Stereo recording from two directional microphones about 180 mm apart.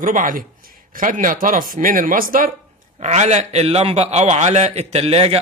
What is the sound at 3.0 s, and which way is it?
A man's voice, 40° right (ahead or behind).